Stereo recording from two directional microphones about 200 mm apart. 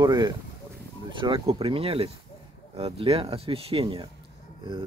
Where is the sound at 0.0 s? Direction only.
20° right (ahead or behind).